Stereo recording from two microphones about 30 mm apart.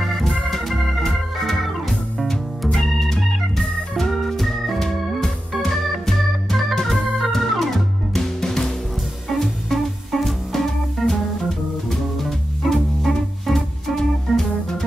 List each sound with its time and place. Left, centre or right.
0.2 s organ: centre
2.7 s organ: centre
6.0 s organ: centre
8.1 s music: centre
9.3 s music: centre